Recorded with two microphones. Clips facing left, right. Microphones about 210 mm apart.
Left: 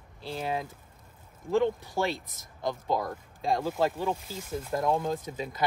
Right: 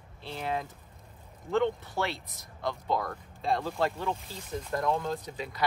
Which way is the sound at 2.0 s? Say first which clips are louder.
Left 3 dB; 15° left (ahead or behind).